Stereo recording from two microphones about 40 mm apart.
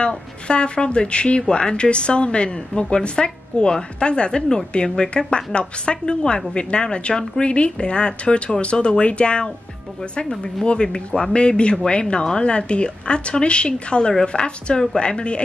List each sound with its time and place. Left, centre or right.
0.0 s a woman's voice: left